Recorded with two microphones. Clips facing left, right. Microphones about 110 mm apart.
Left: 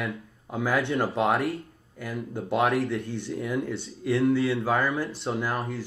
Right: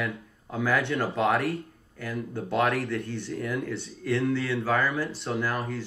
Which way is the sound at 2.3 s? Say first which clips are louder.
Left 2 dB; 15° left (ahead or behind).